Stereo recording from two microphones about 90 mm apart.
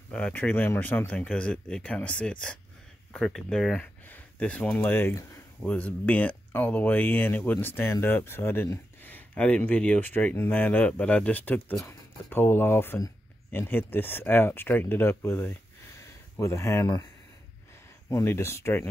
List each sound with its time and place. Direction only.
0.1 s speech: 15° left (ahead or behind); by 17.0 s 35° left (ahead or behind)
18.1 s speech: 25° left (ahead or behind)